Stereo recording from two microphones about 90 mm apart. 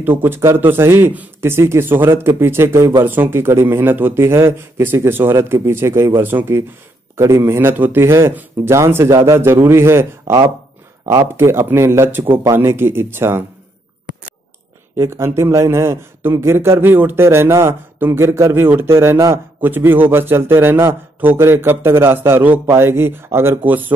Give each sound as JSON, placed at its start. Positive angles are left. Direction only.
{"t": 0.0, "sound": "a man's voice", "side_deg": -25}
{"t": 11.3, "sound": "a man's voice", "side_deg": -25}
{"t": 15.0, "sound": "a man's voice", "side_deg": -30}